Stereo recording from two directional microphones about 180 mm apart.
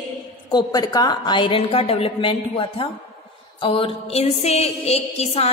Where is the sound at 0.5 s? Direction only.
25° left (ahead or behind).